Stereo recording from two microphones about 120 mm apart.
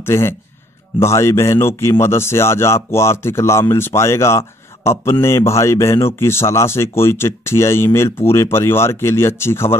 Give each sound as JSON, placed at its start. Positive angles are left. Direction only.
{"t": 0.0, "sound": "speech", "side_deg": 20}